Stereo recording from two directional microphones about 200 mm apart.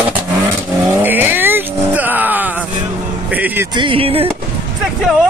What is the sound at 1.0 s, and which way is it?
Vehicle, 10° right (ahead or behind).